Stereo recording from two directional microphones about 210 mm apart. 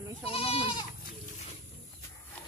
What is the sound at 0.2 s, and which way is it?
Goat, 25° left (ahead or behind).